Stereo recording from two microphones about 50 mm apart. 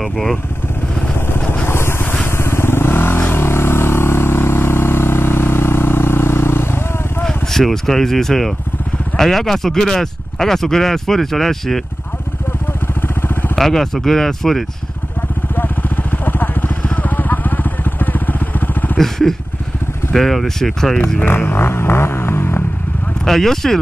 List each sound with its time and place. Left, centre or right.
0.0 s speech: centre
1.7 s vehicle: left
7.2 s speech: centre
13.0 s vehicle: left
13.6 s speech: centre
15.5 s vehicle: left
18.9 s speech: centre
21.3 s a sound: left
23.2 s speech: centre